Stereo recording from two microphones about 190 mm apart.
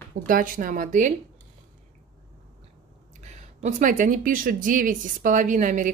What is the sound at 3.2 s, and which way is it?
Speech, 40° right (ahead or behind).